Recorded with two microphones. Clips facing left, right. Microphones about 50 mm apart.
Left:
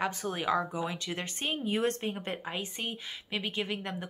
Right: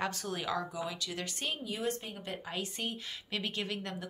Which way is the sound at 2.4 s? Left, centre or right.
Left.